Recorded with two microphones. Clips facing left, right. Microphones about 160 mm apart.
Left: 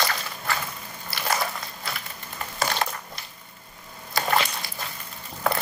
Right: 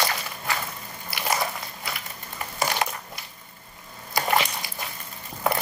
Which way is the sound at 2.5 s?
15° right (ahead or behind).